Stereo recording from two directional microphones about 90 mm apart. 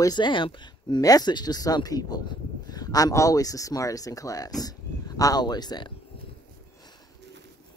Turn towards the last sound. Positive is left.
turn(degrees=50)  # may be behind; listen again after turning